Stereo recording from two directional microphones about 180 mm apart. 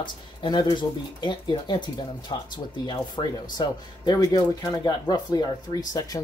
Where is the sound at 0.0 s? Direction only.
25° left (ahead or behind).